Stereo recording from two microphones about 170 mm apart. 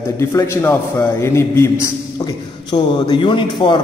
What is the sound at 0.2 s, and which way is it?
A man's voice, 15° left (ahead or behind).